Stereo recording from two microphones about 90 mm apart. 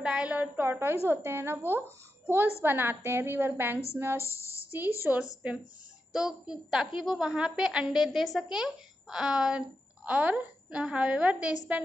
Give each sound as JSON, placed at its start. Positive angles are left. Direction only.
{"t": 0.0, "sound": "a woman's voice", "side_deg": -10}
{"t": 5.4, "sound": "a woman's voice", "side_deg": -10}